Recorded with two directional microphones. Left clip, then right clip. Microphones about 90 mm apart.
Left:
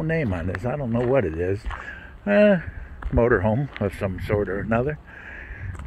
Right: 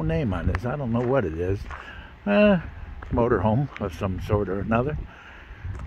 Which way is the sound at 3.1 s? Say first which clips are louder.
Left 2 dB; 10° right (ahead or behind).